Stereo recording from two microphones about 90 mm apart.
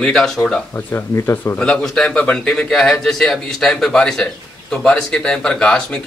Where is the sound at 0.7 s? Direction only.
25° left (ahead or behind).